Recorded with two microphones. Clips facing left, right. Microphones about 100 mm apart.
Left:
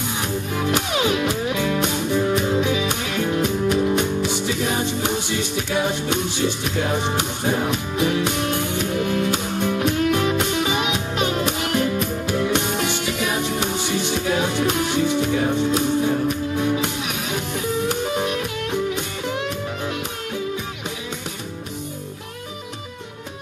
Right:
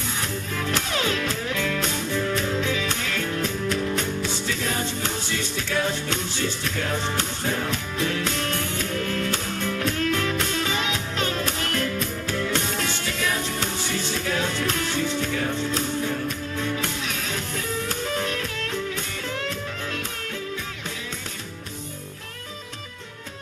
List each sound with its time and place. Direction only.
0.2 s music: 15° left (ahead or behind)